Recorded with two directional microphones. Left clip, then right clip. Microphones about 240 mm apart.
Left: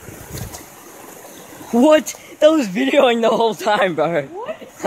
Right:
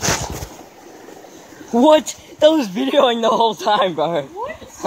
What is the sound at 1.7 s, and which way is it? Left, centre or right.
Speech, centre.